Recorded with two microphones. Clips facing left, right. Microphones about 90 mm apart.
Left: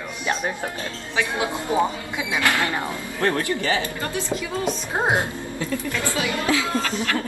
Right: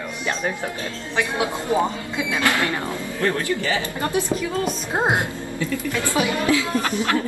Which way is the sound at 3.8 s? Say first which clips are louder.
Right 3 dB; 20° right (ahead or behind).